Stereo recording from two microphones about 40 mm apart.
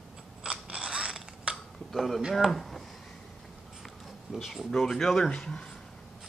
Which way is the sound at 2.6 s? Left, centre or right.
Centre.